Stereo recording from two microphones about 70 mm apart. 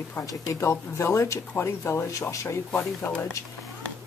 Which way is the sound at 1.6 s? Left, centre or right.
Left.